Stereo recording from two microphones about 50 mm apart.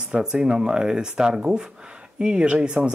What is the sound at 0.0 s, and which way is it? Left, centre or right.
Speech, centre.